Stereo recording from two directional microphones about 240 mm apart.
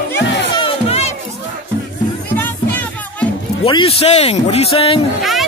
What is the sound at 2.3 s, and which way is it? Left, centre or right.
Music, centre.